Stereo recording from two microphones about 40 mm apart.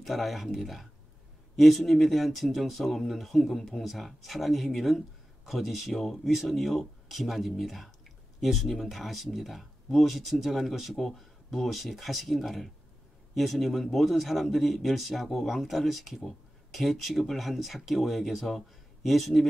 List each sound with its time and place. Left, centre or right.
0.0 s speech: centre